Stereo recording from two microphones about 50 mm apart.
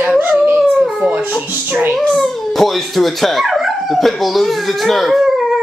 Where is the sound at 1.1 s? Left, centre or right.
Right.